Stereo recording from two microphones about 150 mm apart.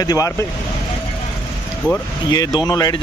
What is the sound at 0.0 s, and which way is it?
Speech, 25° left (ahead or behind).